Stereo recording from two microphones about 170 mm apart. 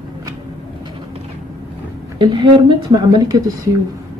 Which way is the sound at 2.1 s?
25° right (ahead or behind).